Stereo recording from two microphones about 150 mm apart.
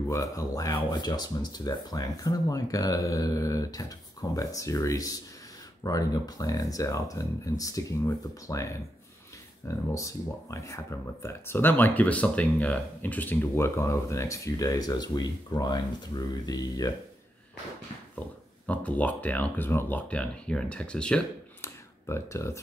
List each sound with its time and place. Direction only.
0.1 s speech: 20° left (ahead or behind)
18.7 s speech: 10° left (ahead or behind)
21.5 s a sound: 20° left (ahead or behind)